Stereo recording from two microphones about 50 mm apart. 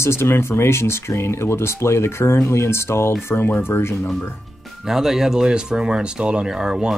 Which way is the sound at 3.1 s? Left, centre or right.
Left.